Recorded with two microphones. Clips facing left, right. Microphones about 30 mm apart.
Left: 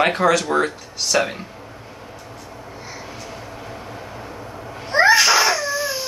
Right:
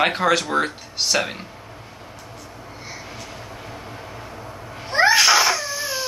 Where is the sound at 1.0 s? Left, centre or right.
Right.